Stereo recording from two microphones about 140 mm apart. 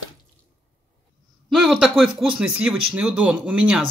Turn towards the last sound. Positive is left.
turn(degrees=-5)  # may be behind; listen again after turning